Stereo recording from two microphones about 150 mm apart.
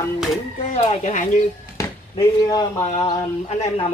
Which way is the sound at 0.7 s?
45° left (ahead or behind).